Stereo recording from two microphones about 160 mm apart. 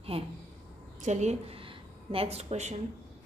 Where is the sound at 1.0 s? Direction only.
45° right (ahead or behind).